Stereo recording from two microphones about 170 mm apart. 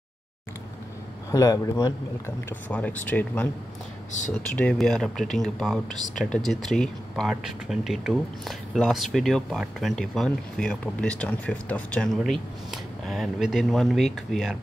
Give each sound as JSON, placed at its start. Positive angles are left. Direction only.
{"t": 1.3, "sound": "speech", "side_deg": 20}
{"t": 2.7, "sound": "speech", "side_deg": 10}